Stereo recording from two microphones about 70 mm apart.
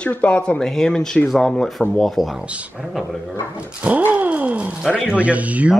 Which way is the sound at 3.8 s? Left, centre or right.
Right.